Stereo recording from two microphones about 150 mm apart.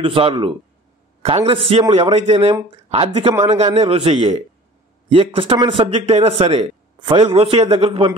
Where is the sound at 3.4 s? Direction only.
50° right (ahead or behind).